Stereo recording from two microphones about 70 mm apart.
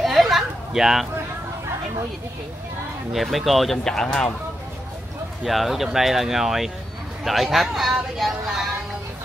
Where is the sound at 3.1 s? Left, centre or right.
Centre.